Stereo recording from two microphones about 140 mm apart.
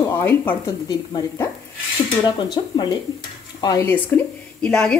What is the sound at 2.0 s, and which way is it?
Dishes, 35° left (ahead or behind).